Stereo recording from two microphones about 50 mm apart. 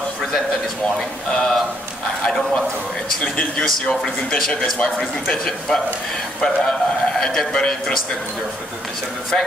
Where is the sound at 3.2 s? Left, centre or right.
Centre.